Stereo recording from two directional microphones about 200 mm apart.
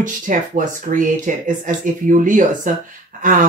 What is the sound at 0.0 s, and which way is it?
Speech, 40° right (ahead or behind).